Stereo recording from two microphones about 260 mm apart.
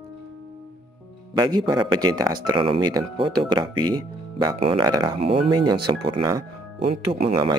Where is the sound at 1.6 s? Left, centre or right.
Centre.